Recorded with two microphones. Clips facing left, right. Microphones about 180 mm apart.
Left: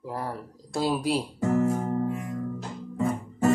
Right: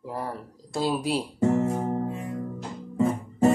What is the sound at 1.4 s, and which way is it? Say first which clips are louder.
Music: right 2 dB; 25° right (ahead or behind).